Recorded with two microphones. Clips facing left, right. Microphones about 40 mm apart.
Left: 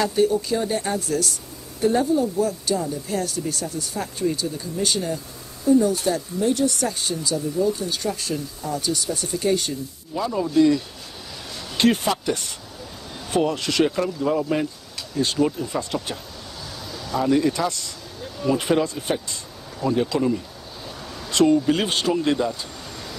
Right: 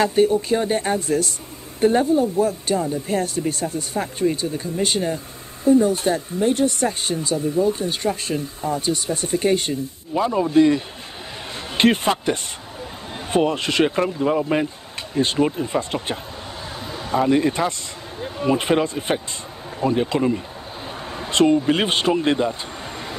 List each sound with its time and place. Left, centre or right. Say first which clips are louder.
0.0 s speech: right 3 dB; right